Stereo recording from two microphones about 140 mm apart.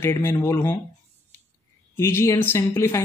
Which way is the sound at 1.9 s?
15° left (ahead or behind).